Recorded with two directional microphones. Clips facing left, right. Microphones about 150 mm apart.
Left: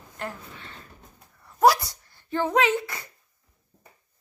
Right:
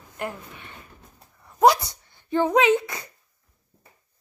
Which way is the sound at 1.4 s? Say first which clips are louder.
Right 2 dB; 20° right (ahead or behind).